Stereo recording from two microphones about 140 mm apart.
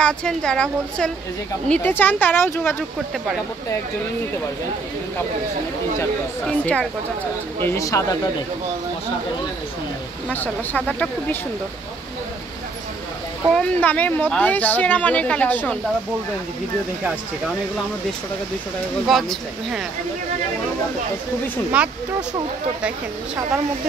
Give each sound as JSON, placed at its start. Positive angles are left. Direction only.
{"t": 0.0, "sound": "a woman's voice", "side_deg": 5}
{"t": 6.4, "sound": "speech", "side_deg": 5}
{"t": 7.6, "sound": "speech", "side_deg": 20}
{"t": 10.3, "sound": "speech", "side_deg": 10}
{"t": 13.6, "sound": "speech", "side_deg": 10}
{"t": 19.0, "sound": "a woman's voice", "side_deg": 0}
{"t": 21.7, "sound": "speech", "side_deg": -10}